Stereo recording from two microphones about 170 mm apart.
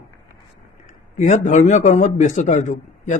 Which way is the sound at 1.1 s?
45° left (ahead or behind).